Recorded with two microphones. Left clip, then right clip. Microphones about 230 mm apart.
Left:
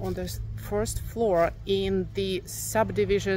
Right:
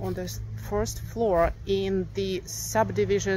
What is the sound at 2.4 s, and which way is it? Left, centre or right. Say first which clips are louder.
Speech: right 3 dB; centre.